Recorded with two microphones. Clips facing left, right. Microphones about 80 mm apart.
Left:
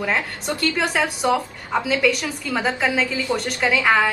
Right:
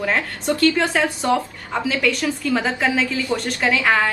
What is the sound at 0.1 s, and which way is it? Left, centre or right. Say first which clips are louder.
A woman's voice: right 2 dB; centre.